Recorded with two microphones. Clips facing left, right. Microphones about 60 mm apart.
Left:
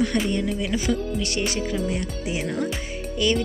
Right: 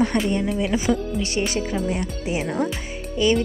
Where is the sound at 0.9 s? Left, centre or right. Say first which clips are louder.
Right 2 dB; right.